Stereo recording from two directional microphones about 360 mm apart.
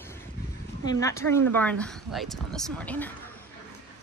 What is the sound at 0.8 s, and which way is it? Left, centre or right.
Speech, centre.